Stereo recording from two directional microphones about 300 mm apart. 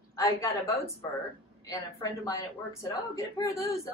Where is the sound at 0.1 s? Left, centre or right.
Centre.